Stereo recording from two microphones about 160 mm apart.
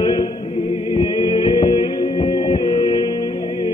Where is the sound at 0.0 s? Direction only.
30° left (ahead or behind).